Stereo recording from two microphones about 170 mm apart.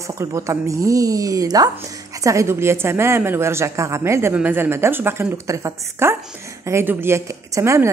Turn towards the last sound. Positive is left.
turn(degrees=-15)  # may be behind; listen again after turning